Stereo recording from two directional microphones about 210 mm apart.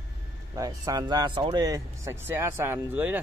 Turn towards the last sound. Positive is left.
turn(degrees=-10)  # may be behind; listen again after turning